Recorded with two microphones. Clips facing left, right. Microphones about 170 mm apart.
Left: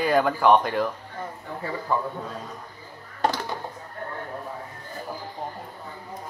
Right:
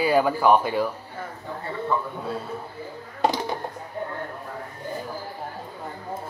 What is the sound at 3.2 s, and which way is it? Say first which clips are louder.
Music: right 2 dB; 15° right (ahead or behind).